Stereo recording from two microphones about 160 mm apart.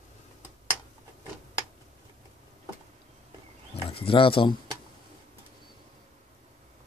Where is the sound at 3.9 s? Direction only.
35° left (ahead or behind).